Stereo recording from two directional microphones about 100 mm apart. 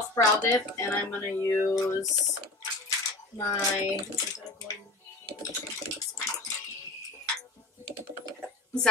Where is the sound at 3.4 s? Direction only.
30° left (ahead or behind).